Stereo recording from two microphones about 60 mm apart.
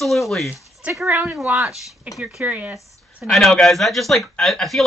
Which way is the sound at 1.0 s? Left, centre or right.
Right.